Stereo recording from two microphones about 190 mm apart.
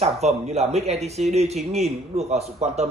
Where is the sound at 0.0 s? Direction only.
35° right (ahead or behind).